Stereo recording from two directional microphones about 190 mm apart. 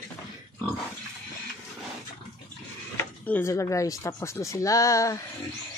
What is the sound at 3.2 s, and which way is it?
Speech, 10° left (ahead or behind).